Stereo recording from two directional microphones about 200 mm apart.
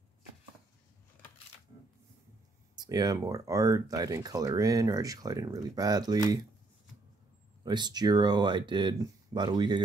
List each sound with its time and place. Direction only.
2.7 s speech: 20° right (ahead or behind)
7.6 s speech: 20° right (ahead or behind)